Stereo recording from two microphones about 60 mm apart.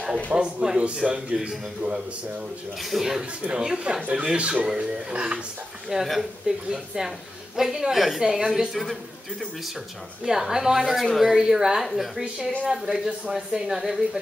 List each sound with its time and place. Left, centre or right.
0.3 s speech: centre
2.8 s speech: centre
5.9 s speech: centre
10.2 s a woman's voice: centre